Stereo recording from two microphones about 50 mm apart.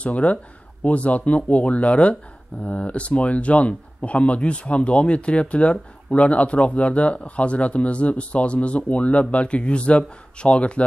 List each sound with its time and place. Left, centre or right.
0.0 s speech: left